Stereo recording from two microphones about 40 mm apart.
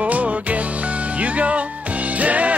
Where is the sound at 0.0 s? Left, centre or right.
Right.